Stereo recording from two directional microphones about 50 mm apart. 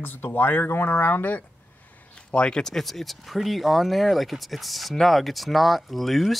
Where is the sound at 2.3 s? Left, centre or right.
Left.